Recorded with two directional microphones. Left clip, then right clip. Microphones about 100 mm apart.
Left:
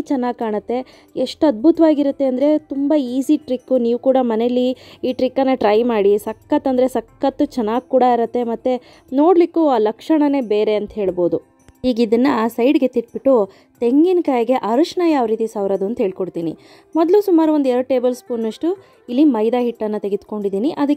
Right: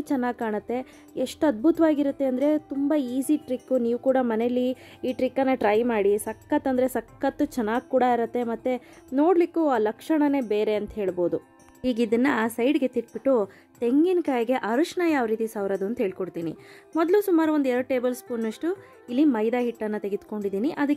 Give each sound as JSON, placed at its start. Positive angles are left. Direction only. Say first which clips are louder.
{"t": 0.0, "sound": "a woman's voice", "louder": "left 6 dB", "side_deg": 15}
{"t": 11.8, "sound": "a woman's voice", "louder": "left 8 dB", "side_deg": 30}